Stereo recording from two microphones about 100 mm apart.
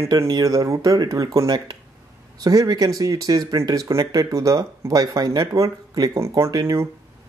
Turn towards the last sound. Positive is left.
turn(degrees=-35)  # may be behind; listen again after turning